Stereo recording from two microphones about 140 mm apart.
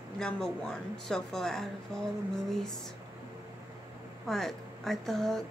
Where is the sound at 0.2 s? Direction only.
5° left (ahead or behind).